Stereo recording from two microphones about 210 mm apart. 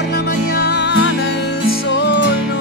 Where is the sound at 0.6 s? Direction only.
55° left (ahead or behind).